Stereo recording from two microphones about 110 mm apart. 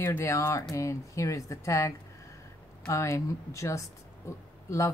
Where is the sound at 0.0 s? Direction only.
25° left (ahead or behind).